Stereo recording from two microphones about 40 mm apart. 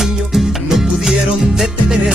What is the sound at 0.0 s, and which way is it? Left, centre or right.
Music, centre.